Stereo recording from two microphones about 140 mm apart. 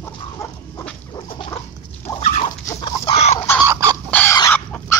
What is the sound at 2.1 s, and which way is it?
Dog, 20° left (ahead or behind).